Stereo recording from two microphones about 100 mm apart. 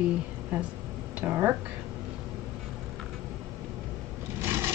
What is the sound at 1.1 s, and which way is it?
Speech, 15° right (ahead or behind).